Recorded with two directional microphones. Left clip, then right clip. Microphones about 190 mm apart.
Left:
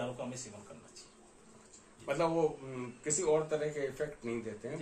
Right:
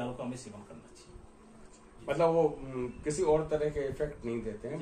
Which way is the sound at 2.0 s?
10° right (ahead or behind).